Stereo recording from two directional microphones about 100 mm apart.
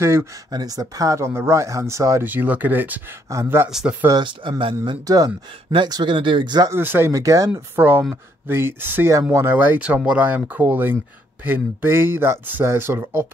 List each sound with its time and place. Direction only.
0.0 s speech: 25° right (ahead or behind)
0.5 s speech: 40° right (ahead or behind)
2.2 s speech: 20° right (ahead or behind)
3.6 s speech: 10° right (ahead or behind)
4.1 s speech: 55° right (ahead or behind)
5.0 s speech: 40° right (ahead or behind)
6.7 s speech: 20° right (ahead or behind)
7.7 s speech: 20° right (ahead or behind)